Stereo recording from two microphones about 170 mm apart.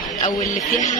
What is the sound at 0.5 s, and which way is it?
Speech, 45° left (ahead or behind).